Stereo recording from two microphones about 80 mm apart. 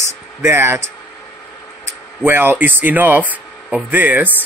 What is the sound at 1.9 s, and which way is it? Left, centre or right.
Speech, right.